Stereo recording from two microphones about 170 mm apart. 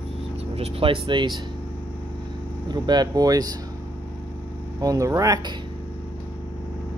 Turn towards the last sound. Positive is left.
turn(degrees=-20)  # may be behind; listen again after turning